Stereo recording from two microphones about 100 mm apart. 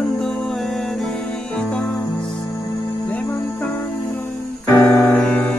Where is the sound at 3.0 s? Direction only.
20° left (ahead or behind).